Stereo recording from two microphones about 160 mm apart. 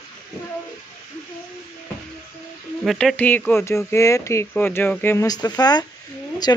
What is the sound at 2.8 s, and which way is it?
A woman's voice, centre (ahead or behind).